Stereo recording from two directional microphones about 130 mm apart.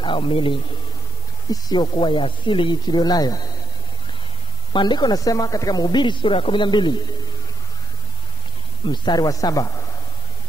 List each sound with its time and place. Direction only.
0.0 s speech: 40° left (ahead or behind)
4.7 s speech: 35° left (ahead or behind)
8.8 s a man's voice: 35° left (ahead or behind)